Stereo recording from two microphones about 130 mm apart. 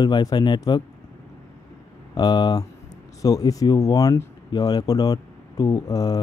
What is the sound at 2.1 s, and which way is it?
Speech, 30° left (ahead or behind).